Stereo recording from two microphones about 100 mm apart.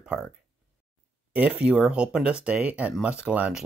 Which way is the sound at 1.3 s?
10° right (ahead or behind).